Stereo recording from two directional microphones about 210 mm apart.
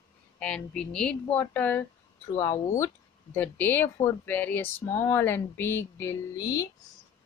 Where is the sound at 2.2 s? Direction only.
20° left (ahead or behind).